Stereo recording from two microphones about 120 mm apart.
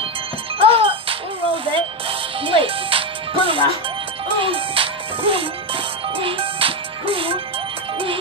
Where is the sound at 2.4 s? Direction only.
50° right (ahead or behind).